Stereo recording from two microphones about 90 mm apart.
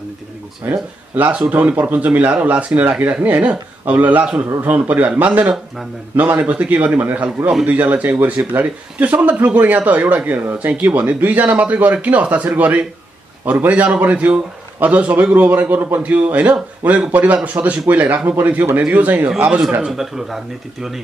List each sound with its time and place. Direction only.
0.7 s speech: 20° right (ahead or behind)
19.8 s speech: 5° right (ahead or behind)